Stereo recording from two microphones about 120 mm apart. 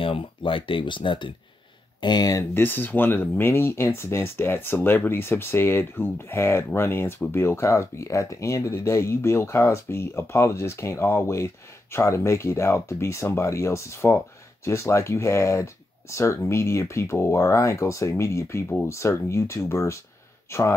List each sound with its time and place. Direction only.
0.0 s speech: 45° left (ahead or behind)
2.5 s speech: 15° left (ahead or behind)